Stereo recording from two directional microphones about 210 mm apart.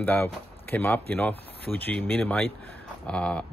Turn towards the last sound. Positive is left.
turn(degrees=5)  # may be behind; listen again after turning